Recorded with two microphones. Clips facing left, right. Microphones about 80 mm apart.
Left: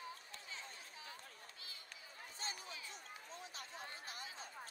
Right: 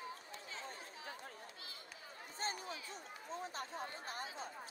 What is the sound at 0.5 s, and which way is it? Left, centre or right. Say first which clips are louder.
Chatter: right 5 dB; right.